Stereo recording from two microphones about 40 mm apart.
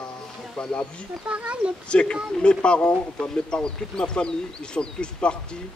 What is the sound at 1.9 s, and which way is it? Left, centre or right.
Speech, left.